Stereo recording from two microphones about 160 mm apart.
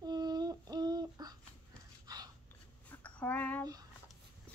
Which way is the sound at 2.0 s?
25° right (ahead or behind).